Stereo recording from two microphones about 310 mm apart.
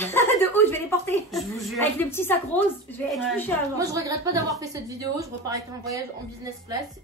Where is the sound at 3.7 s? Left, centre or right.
Centre.